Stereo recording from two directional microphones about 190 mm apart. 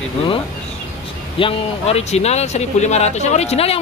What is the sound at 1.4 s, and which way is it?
Speech, 30° left (ahead or behind).